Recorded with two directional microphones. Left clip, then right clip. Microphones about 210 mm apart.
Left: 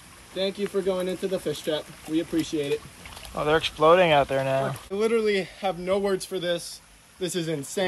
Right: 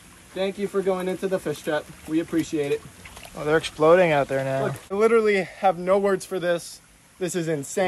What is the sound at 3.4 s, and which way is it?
Speech, centre (ahead or behind).